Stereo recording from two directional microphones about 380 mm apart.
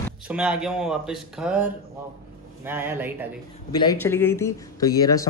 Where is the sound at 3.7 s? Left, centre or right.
Centre.